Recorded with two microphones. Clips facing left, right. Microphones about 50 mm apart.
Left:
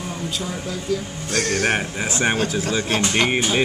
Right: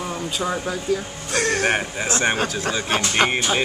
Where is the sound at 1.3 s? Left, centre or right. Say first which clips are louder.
Right 1 dB; centre.